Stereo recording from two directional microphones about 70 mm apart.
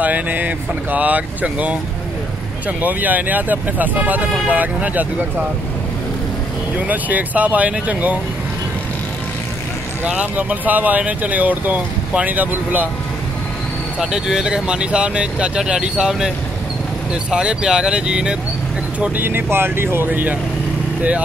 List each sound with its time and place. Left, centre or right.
0.0 s speech: right
2.8 s speech: right
6.8 s speech: right
10.0 s speech: centre
13.9 s speech: centre
18.9 s speech: right